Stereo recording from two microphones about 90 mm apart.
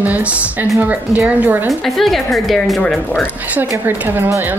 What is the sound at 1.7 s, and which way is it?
A woman's voice, centre (ahead or behind).